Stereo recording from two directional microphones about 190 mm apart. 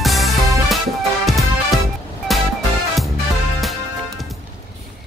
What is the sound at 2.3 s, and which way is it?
Music, centre (ahead or behind).